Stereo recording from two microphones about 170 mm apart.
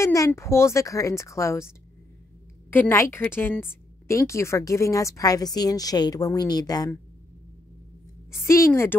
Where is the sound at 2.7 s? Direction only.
15° left (ahead or behind).